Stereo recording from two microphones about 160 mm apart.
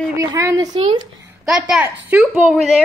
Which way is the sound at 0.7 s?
35° right (ahead or behind).